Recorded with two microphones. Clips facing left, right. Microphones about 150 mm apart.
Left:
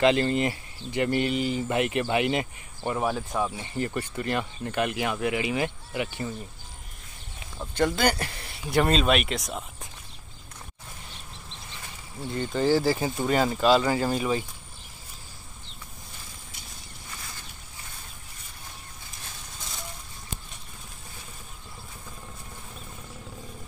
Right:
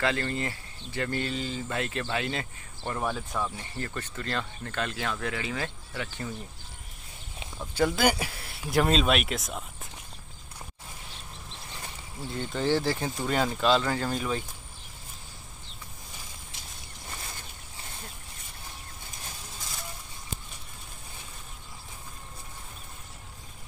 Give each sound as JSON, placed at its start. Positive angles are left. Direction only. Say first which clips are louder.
{"t": 0.0, "sound": "speech", "louder": "left 7 dB", "side_deg": 20}
{"t": 7.7, "sound": "speech", "louder": "left 1 dB", "side_deg": -5}
{"t": 12.3, "sound": "speech", "louder": "left 4 dB", "side_deg": 0}